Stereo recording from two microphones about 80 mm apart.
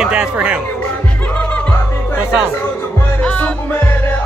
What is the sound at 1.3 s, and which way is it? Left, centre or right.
Music, centre.